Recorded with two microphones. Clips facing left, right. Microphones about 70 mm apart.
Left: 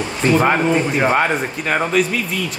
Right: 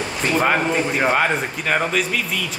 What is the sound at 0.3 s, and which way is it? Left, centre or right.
Speech, centre.